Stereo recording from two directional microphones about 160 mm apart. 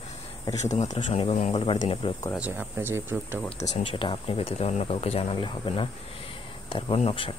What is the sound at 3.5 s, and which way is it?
Speech, 40° left (ahead or behind).